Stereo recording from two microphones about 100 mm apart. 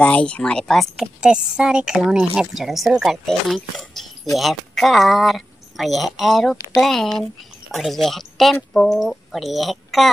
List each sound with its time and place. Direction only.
0.0 s speech: 10° left (ahead or behind)